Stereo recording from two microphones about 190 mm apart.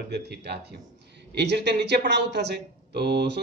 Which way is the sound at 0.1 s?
60° right (ahead or behind).